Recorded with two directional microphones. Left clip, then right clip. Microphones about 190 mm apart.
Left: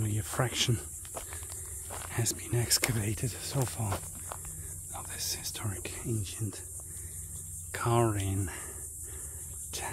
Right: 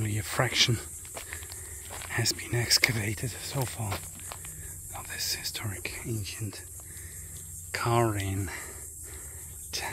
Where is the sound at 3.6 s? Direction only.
15° left (ahead or behind).